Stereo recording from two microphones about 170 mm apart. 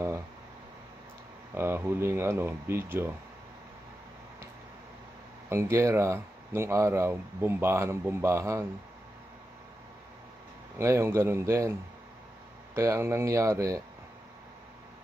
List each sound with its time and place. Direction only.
1.5 s speech: 15° right (ahead or behind)
5.5 s speech: 15° right (ahead or behind)
10.8 s speech: 15° right (ahead or behind)
12.7 s speech: 15° right (ahead or behind)